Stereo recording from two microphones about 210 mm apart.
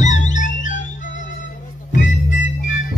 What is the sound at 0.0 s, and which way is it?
Music, 35° left (ahead or behind).